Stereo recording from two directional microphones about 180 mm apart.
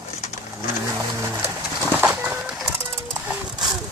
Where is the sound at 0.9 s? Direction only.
15° right (ahead or behind).